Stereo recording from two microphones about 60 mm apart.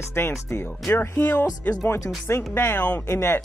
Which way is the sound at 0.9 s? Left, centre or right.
Left.